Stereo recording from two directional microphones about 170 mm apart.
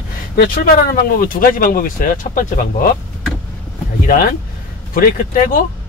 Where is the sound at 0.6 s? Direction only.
60° left (ahead or behind).